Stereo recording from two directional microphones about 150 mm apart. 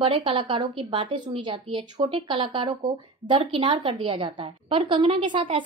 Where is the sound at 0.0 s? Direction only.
35° right (ahead or behind).